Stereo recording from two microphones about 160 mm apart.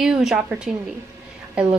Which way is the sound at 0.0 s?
5° right (ahead or behind).